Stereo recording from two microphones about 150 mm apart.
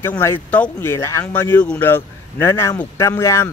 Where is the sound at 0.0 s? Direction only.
15° left (ahead or behind).